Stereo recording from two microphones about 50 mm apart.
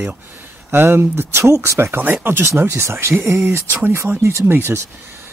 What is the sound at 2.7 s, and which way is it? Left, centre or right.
Speech, right.